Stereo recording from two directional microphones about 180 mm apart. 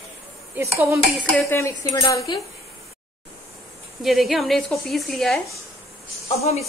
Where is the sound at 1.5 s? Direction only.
15° left (ahead or behind).